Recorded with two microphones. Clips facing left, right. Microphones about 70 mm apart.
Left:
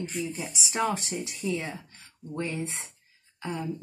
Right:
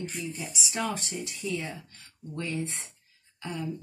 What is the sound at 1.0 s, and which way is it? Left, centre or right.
Speech, left.